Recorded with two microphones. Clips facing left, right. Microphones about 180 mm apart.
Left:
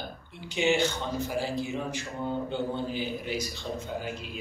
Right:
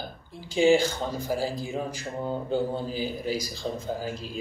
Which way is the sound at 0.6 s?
35° right (ahead or behind).